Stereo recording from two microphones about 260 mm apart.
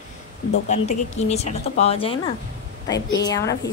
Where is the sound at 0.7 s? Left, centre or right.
Left.